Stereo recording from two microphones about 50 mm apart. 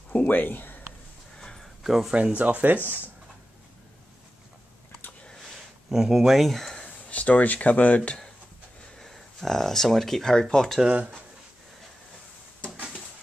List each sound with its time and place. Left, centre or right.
0.1 s speech: left
1.4 s a sound: centre
1.8 s speech: centre
2.3 s speech: right
5.9 s speech: centre
7.1 s speech: left
8.9 s speech: centre